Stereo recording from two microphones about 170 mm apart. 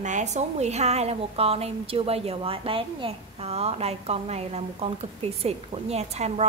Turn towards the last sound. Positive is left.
turn(degrees=-40)  # may be behind; listen again after turning